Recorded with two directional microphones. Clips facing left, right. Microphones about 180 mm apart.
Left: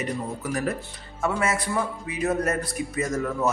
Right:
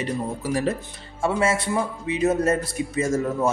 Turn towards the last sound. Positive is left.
turn(degrees=-25)  # may be behind; listen again after turning